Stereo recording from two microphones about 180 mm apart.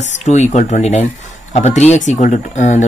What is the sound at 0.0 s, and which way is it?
Speech, 40° left (ahead or behind).